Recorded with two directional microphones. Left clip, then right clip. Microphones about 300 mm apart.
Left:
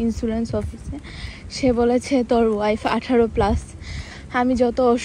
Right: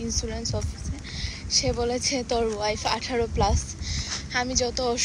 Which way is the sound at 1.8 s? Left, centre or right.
Centre.